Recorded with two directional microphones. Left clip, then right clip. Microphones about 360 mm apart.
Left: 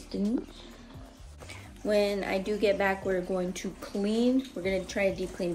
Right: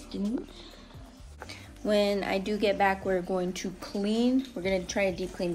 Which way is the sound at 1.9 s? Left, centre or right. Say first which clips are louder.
Right 1 dB; centre.